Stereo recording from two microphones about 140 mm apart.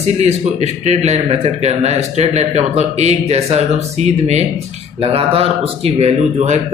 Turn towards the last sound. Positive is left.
turn(degrees=-50)  # may be behind; listen again after turning